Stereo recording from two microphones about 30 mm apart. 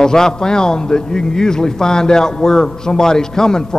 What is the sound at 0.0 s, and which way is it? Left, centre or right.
A man's voice, centre.